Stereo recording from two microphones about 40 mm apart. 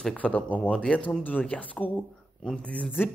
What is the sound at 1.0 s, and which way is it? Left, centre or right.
Speech, left.